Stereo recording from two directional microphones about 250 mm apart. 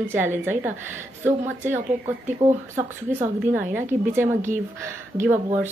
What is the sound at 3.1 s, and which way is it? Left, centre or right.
A woman's voice, centre.